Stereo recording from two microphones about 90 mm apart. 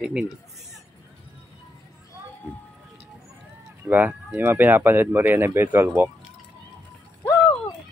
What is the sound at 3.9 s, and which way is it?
Speech, 20° right (ahead or behind).